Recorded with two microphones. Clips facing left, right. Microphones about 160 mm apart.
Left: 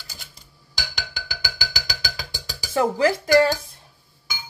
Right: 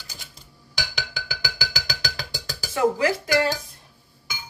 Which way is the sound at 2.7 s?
30° left (ahead or behind).